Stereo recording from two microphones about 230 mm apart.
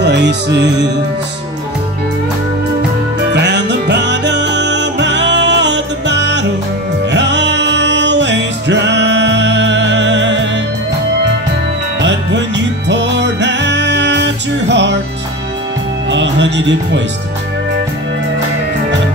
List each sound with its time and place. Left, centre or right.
0.0 s music: right
3.3 s music: right
12.0 s music: right
16.1 s speech: right